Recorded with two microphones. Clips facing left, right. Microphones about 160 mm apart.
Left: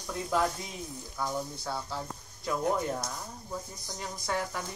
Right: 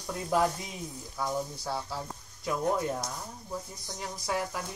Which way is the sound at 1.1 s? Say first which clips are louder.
Right 1 dB; 5° right (ahead or behind).